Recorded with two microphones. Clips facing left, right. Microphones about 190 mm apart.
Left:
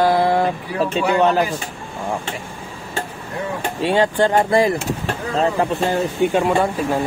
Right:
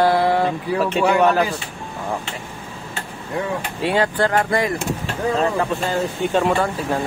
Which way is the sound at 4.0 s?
25° left (ahead or behind).